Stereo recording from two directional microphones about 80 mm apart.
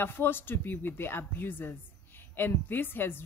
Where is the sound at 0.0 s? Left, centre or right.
Left.